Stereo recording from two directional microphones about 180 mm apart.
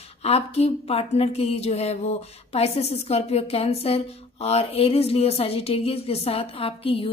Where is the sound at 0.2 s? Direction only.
35° left (ahead or behind).